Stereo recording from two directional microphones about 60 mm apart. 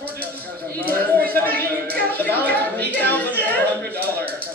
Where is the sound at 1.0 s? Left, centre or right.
Left.